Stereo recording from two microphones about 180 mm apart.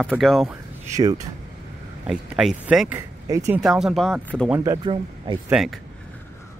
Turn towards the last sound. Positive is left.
turn(degrees=0)  # may be behind; listen again after turning